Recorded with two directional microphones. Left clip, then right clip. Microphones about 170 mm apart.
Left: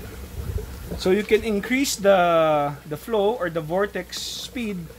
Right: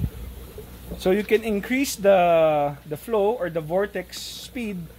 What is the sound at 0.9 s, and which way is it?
Speech, 50° right (ahead or behind).